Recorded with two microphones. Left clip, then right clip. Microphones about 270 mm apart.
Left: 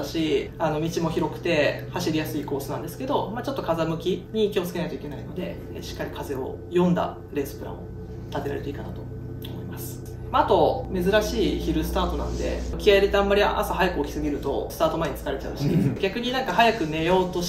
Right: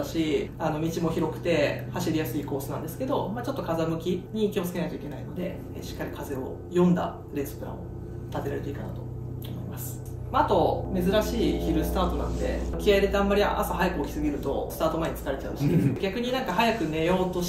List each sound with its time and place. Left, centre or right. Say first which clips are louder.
0.2 s speech: left 4 dB; centre
6.7 s speech: left 2 dB; centre
10.9 s speech: left 3 dB; centre